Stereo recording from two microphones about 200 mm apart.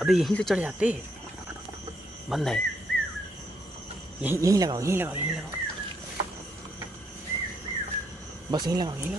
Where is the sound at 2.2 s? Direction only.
Centre (ahead or behind).